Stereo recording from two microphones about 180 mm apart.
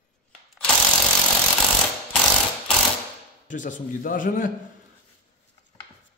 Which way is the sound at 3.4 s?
45° left (ahead or behind).